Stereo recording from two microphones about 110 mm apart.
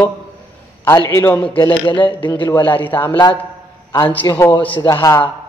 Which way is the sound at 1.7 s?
55° left (ahead or behind).